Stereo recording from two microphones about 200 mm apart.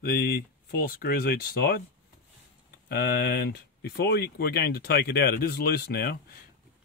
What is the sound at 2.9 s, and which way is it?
Speech, 55° left (ahead or behind).